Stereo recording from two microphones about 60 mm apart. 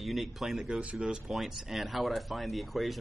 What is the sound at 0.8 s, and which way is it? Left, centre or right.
Speech, centre.